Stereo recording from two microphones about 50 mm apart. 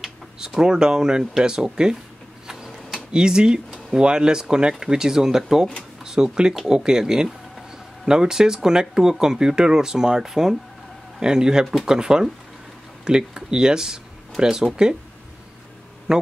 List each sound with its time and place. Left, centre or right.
0.6 s speech: centre
2.4 s a sound: centre
3.1 s speech: centre
7.2 s a sound: centre
8.1 s speech: centre
16.1 s a man's voice: centre